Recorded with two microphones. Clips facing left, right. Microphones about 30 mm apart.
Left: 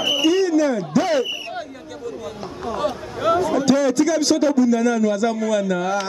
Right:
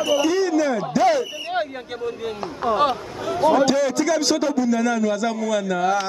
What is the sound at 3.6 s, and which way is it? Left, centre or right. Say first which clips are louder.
A man's voice: left 2 dB; centre.